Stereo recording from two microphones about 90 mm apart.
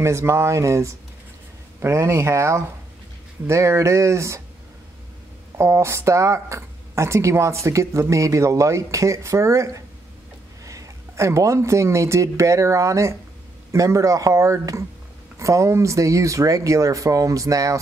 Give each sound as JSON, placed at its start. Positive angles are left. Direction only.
{"t": 0.0, "sound": "speech", "side_deg": -30}
{"t": 5.6, "sound": "speech", "side_deg": -30}